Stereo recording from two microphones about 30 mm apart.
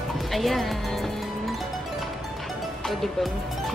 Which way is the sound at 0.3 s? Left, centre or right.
Centre.